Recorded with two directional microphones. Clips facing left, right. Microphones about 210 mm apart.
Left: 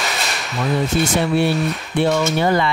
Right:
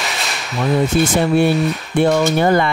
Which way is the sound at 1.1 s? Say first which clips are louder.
Right 3 dB; 50° right (ahead or behind).